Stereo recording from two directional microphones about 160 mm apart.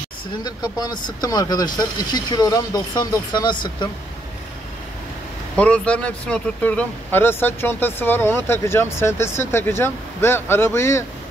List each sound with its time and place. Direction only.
0.4 s speech: 25° left (ahead or behind)
5.6 s speech: 5° left (ahead or behind)